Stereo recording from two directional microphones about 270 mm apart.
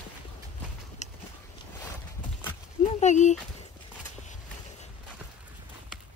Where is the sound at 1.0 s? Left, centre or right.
Left.